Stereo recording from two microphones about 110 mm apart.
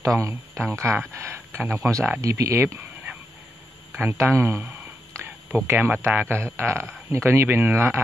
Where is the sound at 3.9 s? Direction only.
25° right (ahead or behind).